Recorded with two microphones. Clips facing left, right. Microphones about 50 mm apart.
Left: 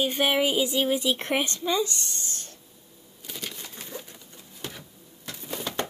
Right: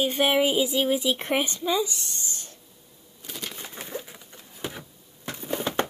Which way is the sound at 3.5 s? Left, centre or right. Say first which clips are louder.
Right 4 dB; right.